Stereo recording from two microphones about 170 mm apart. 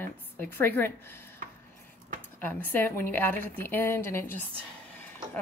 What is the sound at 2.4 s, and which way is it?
A woman's voice, 10° left (ahead or behind).